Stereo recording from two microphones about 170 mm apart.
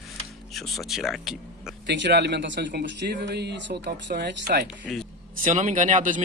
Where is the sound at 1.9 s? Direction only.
90° right; by 4.6 s 75° right (ahead or behind).